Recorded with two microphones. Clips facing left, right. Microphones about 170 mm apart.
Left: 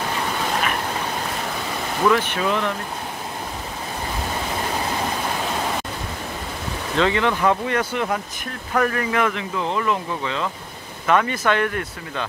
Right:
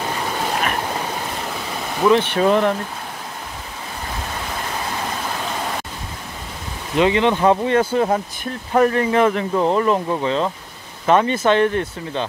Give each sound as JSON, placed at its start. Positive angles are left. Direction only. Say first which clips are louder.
{"t": 2.0, "sound": "speech", "louder": "right 4 dB", "side_deg": -25}
{"t": 2.3, "sound": "speech", "louder": "right 7 dB", "side_deg": -45}
{"t": 7.0, "sound": "speech", "louder": "right 4 dB", "side_deg": -20}